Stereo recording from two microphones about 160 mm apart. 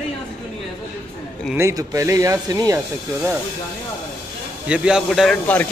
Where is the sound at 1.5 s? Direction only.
20° right (ahead or behind).